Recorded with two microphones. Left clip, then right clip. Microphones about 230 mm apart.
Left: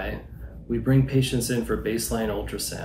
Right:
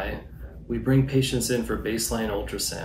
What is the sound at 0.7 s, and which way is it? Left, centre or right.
Speech, centre.